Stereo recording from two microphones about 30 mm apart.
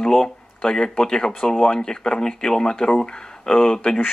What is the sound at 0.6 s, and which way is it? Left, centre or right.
Speech, left.